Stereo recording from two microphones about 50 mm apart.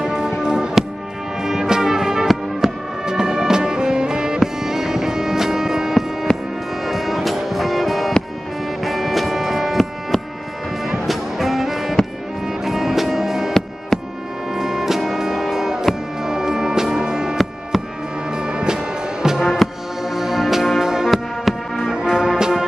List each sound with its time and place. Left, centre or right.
0.0 s music: centre
6.3 s music: centre
6.8 s music: centre
13.5 s music: centre
14.5 s music: centre
21.9 s music: centre